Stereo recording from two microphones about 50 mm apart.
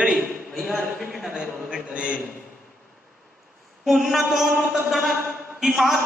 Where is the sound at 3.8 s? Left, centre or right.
Centre.